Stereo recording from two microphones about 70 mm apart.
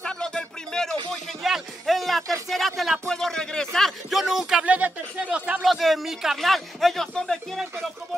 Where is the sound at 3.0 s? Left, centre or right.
Centre.